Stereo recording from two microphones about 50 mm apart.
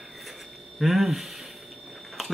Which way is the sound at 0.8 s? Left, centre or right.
Centre.